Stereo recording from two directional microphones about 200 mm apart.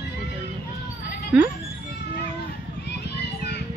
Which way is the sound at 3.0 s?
55° left (ahead or behind).